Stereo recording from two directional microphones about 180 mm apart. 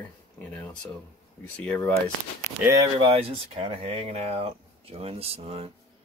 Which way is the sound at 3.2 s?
30° right (ahead or behind).